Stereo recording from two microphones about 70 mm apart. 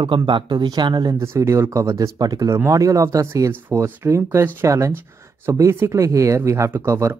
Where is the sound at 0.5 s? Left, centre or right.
Right.